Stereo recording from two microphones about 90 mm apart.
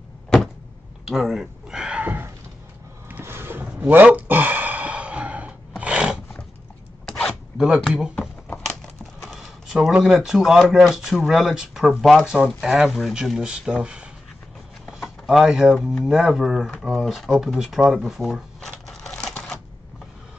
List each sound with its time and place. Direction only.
1.0 s a sound: centre (ahead or behind)
7.1 s zipper: 5° left (ahead or behind)
7.6 s speech: 10° right (ahead or behind)
9.2 s a sound: centre (ahead or behind)
9.9 s speech: 5° right (ahead or behind)
19.3 s typewriter: 10° left (ahead or behind)